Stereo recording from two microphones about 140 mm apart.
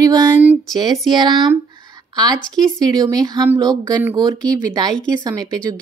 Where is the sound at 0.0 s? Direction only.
30° right (ahead or behind).